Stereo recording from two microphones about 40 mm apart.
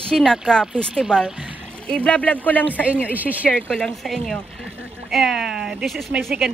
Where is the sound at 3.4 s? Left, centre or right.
Left.